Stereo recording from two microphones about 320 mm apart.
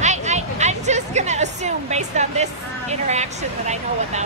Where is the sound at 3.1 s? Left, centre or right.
Right.